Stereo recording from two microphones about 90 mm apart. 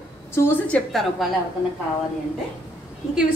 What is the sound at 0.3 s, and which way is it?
Speech, 25° left (ahead or behind).